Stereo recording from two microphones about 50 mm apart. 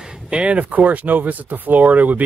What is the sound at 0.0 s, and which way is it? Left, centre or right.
Speech, right.